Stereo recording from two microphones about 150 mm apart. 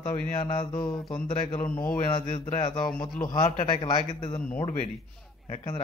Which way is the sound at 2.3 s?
45° left (ahead or behind).